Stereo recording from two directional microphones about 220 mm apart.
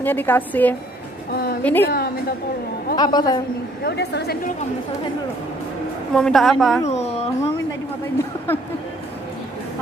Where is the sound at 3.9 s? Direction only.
50° left (ahead or behind).